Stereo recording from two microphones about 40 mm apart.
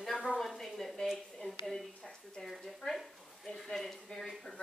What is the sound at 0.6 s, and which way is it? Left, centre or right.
Speech, centre.